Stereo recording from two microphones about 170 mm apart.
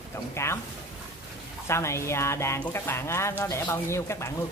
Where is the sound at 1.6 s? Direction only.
15° left (ahead or behind).